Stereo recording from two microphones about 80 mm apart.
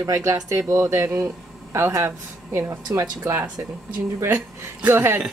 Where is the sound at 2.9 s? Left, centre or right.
Right.